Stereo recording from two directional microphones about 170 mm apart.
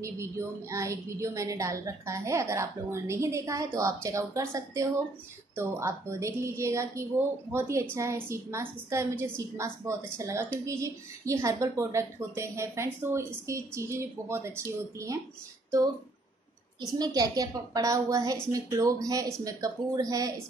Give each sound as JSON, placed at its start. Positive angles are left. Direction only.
{"t": 0.0, "sound": "a woman's voice", "side_deg": -15}
{"t": 17.0, "sound": "a woman's voice", "side_deg": -20}